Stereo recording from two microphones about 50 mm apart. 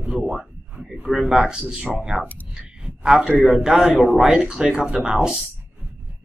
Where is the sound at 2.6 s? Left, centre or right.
Centre.